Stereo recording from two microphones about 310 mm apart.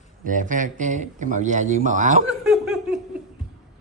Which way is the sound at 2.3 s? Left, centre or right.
Centre.